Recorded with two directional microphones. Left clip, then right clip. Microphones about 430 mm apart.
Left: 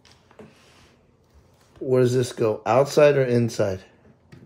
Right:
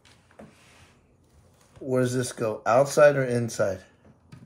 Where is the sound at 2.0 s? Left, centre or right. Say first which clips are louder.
Left 5 dB; left.